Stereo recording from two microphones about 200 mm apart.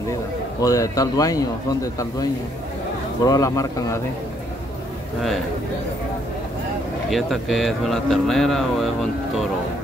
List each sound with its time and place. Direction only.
0.6 s a man's voice: 15° left (ahead or behind)
3.3 s a man's voice: 15° left (ahead or behind)
7.1 s speech: centre (ahead or behind)